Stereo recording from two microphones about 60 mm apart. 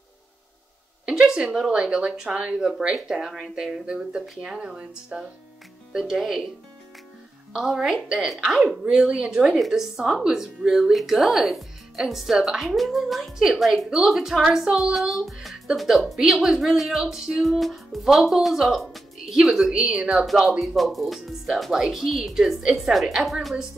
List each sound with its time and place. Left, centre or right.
1.0 s a sound: centre
1.6 s speech: centre
7.5 s speech: centre